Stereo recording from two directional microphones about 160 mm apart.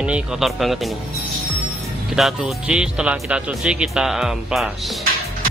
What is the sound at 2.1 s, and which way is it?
Speech, centre (ahead or behind).